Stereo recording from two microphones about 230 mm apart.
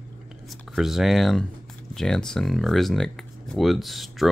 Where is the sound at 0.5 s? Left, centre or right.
Centre.